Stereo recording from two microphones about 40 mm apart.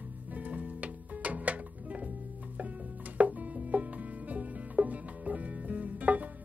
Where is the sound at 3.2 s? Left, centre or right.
Right.